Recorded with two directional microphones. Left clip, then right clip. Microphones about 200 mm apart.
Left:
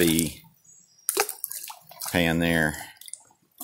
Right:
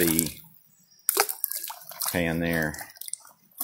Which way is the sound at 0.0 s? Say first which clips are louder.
Left 3 dB; 20° left (ahead or behind).